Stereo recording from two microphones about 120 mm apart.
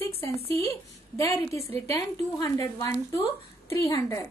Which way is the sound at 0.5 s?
25° left (ahead or behind).